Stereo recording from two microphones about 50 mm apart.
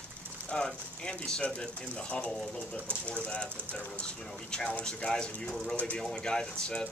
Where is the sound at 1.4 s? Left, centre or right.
Left.